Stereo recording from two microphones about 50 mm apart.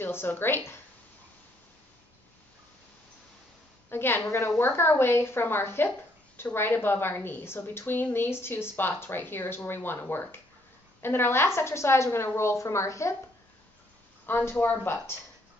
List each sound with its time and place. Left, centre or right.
0.0 s a woman's voice: left
3.9 s a woman's voice: left
14.2 s a woman's voice: left